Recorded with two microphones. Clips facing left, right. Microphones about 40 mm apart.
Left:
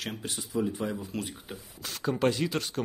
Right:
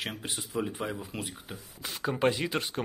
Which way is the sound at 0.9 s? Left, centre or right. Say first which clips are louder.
Left 2 dB; centre.